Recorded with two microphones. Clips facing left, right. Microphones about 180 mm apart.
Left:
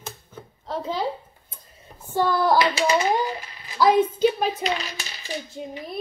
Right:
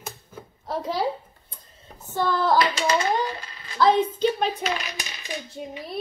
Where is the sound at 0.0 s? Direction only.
10° right (ahead or behind).